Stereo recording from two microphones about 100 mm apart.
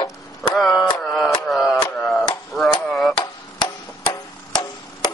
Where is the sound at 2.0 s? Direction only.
5° left (ahead or behind).